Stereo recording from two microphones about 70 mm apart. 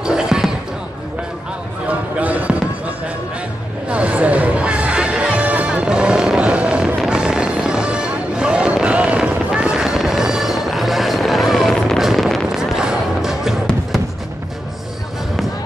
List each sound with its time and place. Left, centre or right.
0.0 s basketball bounce: centre
1.9 s a sound: centre
3.9 s music: centre
7.0 s vehicle: centre
12.0 s a sound: centre
12.5 s music: centre